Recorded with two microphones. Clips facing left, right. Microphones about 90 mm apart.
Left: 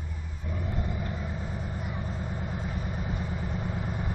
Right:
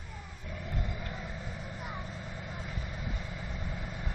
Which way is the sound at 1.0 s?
25° left (ahead or behind).